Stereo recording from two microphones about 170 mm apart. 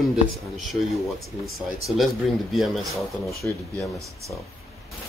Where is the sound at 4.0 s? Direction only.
20° right (ahead or behind).